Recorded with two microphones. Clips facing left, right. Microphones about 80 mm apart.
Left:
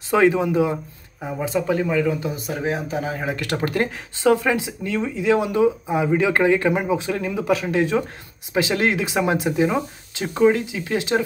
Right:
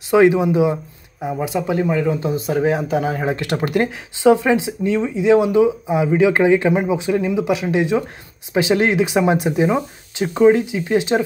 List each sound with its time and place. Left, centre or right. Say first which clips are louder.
0.1 s speech: right 4 dB; centre
2.1 s speech: right 7 dB; right
3.3 s speech: right 3 dB; right